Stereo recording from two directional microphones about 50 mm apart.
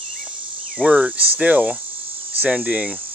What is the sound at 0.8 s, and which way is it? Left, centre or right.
Speech, right.